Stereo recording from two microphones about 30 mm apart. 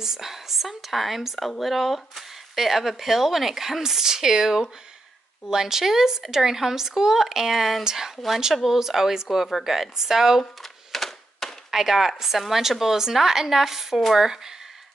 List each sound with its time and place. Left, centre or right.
0.0 s speech: centre
7.8 s speech: centre
10.6 s a sound: centre
11.7 s speech: centre